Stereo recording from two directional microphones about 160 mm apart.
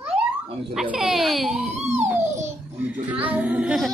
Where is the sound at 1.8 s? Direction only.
45° right (ahead or behind).